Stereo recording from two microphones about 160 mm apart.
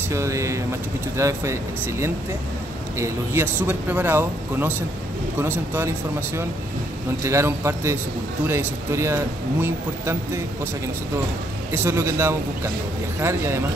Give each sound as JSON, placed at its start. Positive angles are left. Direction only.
{"t": 0.1, "sound": "speech", "side_deg": -20}
{"t": 7.2, "sound": "speech", "side_deg": -15}
{"t": 11.7, "sound": "speech", "side_deg": -15}